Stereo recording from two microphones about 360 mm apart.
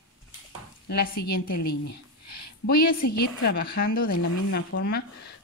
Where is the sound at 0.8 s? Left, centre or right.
Left.